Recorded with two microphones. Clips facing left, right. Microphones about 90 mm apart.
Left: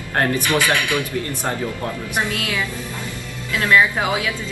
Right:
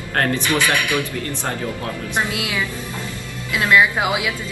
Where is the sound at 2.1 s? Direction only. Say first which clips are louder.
Right 1 dB; 15° right (ahead or behind).